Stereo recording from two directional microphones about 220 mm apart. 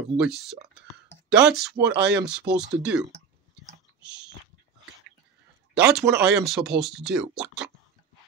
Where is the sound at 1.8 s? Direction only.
50° right (ahead or behind).